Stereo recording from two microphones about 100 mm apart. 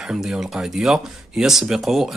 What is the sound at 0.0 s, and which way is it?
Speech, 5° right (ahead or behind).